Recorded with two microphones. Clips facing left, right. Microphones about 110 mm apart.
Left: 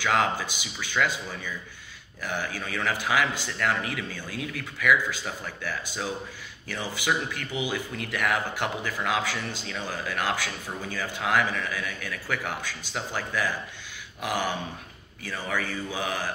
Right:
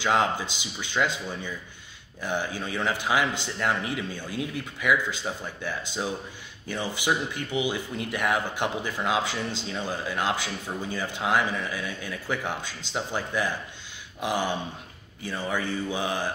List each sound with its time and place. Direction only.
0.0 s speech: 20° right (ahead or behind)